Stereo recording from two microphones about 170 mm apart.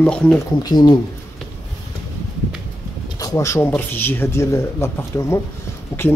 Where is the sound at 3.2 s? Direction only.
15° left (ahead or behind).